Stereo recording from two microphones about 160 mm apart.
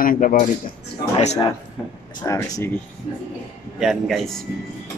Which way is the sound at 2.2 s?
20° left (ahead or behind).